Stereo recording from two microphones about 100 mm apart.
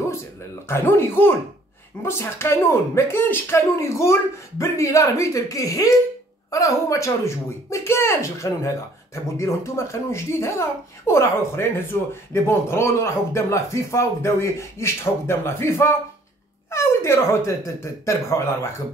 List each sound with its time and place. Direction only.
0.7 s speech: 25° left (ahead or behind)